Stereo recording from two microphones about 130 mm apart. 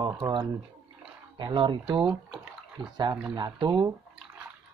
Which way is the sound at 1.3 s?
40° right (ahead or behind).